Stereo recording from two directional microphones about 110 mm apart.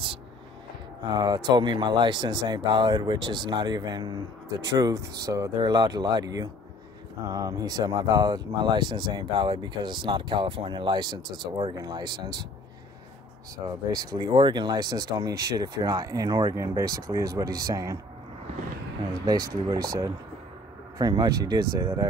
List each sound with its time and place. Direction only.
1.1 s speech: 40° right (ahead or behind)
5.6 s speech: 40° right (ahead or behind)
11.7 s speech: 40° right (ahead or behind)
13.8 s speech: 35° right (ahead or behind)
19.2 s speech: 35° right (ahead or behind)